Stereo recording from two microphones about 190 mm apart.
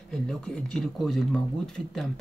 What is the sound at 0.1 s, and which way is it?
Speech, 5° left (ahead or behind).